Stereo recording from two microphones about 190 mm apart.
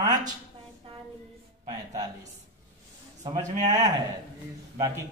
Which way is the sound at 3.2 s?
40° right (ahead or behind).